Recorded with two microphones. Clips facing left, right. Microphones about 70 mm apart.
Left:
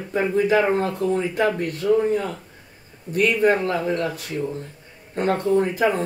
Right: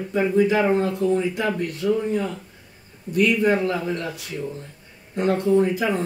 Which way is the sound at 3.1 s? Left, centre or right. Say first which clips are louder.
Left 1 dB; left.